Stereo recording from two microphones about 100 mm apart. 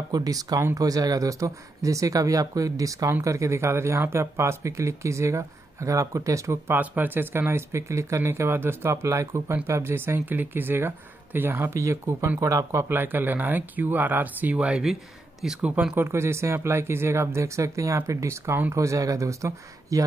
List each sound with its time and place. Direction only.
0.1 s speech: 35° right (ahead or behind)
6.8 s speech: 20° right (ahead or behind)
16.1 s speech: 25° right (ahead or behind)